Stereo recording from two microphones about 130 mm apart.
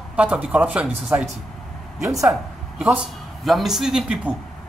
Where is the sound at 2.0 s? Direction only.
25° right (ahead or behind).